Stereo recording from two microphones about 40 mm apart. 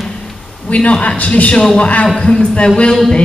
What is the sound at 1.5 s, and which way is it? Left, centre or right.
Speech, centre.